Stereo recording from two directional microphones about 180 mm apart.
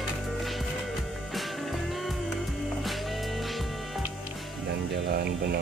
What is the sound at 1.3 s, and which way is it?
Music, centre (ahead or behind).